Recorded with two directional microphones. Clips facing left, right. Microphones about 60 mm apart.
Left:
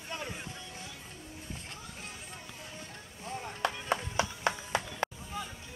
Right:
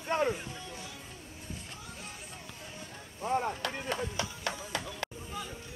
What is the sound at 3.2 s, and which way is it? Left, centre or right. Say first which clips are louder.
Chop: right 10 dB; right.